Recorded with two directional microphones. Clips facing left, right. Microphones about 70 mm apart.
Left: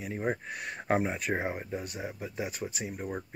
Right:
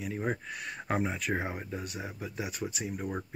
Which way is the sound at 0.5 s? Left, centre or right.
Left.